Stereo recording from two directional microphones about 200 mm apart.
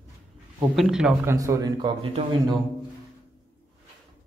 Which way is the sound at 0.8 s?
Centre (ahead or behind).